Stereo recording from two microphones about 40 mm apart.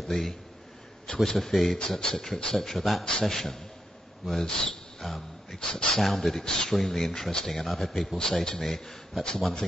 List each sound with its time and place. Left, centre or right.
0.0 s a man's voice: centre
5.0 s a sound: centre
5.6 s speech: centre
5.9 s speech: centre